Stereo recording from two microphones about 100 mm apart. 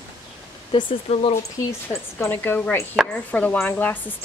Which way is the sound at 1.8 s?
25° left (ahead or behind).